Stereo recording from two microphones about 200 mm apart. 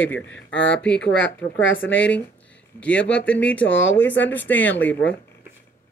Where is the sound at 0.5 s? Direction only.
65° left (ahead or behind).